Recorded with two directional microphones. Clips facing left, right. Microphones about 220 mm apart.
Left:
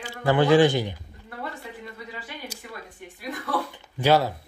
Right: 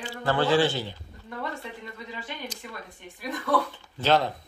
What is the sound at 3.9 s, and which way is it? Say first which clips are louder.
Speech: left 3 dB; 10° left (ahead or behind).